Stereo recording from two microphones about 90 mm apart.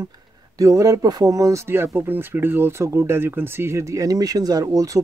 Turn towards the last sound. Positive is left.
turn(degrees=-40)  # may be behind; listen again after turning